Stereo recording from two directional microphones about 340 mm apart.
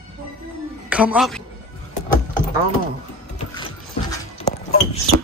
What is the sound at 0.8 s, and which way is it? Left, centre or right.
Speech, centre.